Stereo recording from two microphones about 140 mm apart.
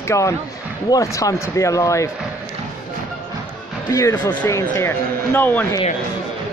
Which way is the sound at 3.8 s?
25° left (ahead or behind).